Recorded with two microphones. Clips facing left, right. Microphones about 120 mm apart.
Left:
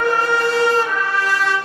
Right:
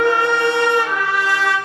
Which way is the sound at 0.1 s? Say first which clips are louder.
Right 1 dB; 20° right (ahead or behind).